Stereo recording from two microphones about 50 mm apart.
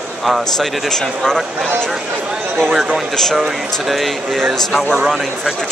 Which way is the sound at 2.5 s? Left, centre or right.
Centre.